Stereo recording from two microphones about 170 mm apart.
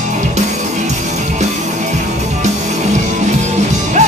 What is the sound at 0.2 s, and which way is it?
Music, 45° right (ahead or behind).